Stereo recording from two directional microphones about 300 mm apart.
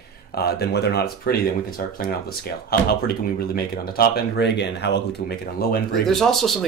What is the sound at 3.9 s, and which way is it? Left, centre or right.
Speech, left.